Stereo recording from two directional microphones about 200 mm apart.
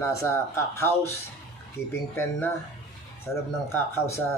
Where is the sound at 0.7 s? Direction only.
10° left (ahead or behind).